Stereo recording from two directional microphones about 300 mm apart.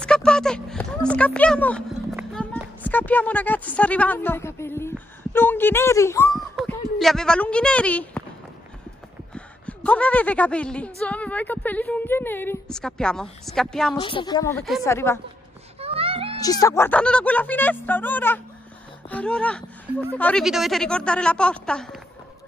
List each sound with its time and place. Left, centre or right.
0.0 s a sound: centre
9.3 s a woman's voice: centre
13.9 s a woman's voice: centre
15.8 s music: centre
16.3 s a woman's voice: centre